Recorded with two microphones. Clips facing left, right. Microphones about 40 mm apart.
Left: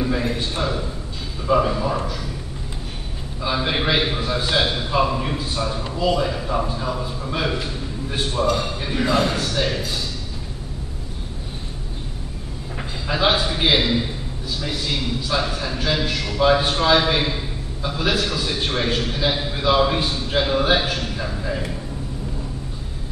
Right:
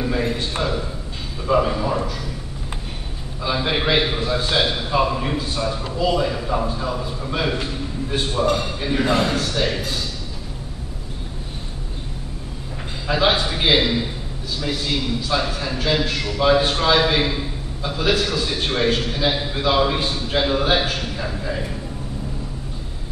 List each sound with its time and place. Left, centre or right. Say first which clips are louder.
0.6 s a man's voice: right 1 dB; centre
3.4 s a man's voice: right 1 dB; centre
9.0 s a man's voice: left 1 dB; right
9.3 s a man's voice: right 1 dB; centre
13.0 s a man's voice: right 1 dB; centre
15.2 s a man's voice: right 1 dB; centre